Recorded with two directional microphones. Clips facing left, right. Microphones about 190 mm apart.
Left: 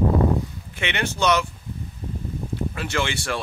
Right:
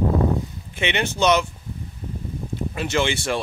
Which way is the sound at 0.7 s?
20° right (ahead or behind).